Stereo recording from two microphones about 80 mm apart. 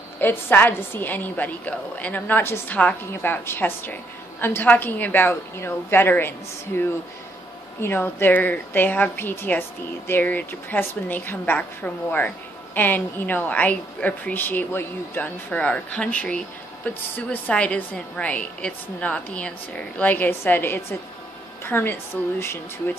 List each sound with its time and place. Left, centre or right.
0.2 s a woman's voice: left